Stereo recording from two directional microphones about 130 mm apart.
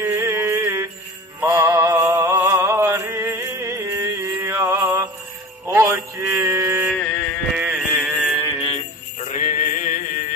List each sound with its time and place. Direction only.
0.0 s mantra: 20° right (ahead or behind)
1.4 s music: 20° right (ahead or behind)
5.8 s mantra: 25° right (ahead or behind)
6.9 s a sound: 10° left (ahead or behind)
7.5 s a sound: 10° right (ahead or behind)
8.0 s mantra: centre (ahead or behind)
9.2 s mantra: 60° left (ahead or behind); by 10.2 s 90° left